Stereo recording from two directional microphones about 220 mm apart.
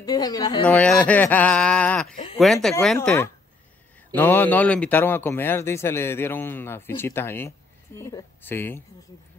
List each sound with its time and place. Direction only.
0.0 s a man's voice: 20° left (ahead or behind)
0.7 s a man's voice: 5° left (ahead or behind)